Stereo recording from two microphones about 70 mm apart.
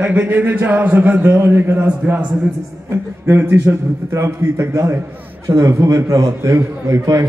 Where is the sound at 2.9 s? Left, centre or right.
Right.